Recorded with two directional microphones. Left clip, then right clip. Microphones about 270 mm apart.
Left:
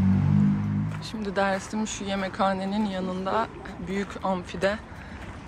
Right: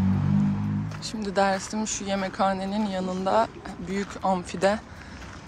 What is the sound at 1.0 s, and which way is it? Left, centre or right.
Speech, centre.